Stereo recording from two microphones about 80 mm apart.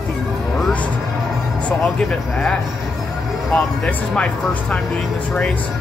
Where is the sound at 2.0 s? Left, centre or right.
Centre.